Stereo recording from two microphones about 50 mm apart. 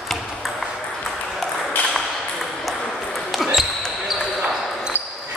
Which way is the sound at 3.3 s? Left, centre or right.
Centre.